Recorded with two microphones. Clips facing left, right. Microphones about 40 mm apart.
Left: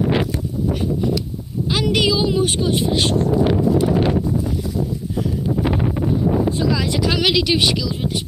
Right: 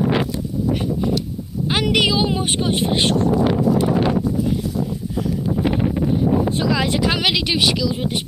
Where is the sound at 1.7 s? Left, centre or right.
Right.